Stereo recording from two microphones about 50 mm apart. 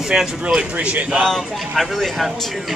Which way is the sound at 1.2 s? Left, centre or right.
Centre.